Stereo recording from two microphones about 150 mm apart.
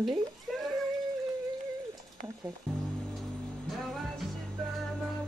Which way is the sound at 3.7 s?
Centre (ahead or behind).